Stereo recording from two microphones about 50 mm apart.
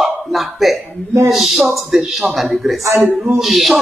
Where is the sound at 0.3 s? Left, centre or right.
Centre.